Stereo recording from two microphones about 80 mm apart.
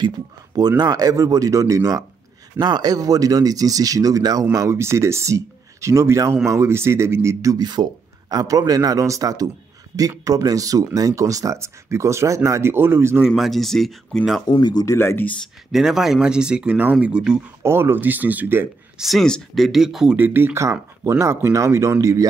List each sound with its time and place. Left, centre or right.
0.6 s speech: right
2.6 s speech: right
4.7 s speech: right
7.5 s speech: right
13.4 s speech: centre
14.5 s speech: left
15.0 s speech: left
15.7 s speech: centre
17.6 s speech: right
18.9 s speech: centre
20.2 s speech: right